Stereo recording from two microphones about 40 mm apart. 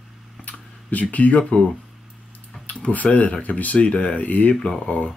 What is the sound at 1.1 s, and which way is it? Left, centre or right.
Speech, left.